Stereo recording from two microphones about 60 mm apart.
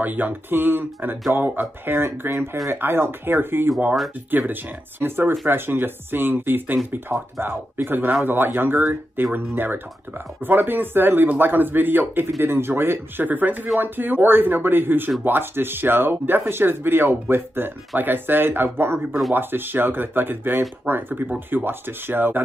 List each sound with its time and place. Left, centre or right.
0.0 s speech: right